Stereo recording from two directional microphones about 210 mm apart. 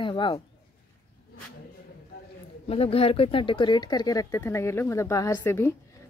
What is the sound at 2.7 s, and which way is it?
Speech, 30° left (ahead or behind).